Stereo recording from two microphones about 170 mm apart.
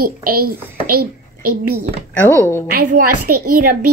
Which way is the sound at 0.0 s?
60° right (ahead or behind).